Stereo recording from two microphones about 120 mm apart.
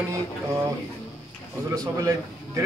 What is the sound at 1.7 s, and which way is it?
Speech, 30° right (ahead or behind).